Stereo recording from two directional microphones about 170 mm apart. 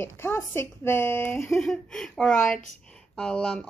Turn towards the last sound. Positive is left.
turn(degrees=5)  # may be behind; listen again after turning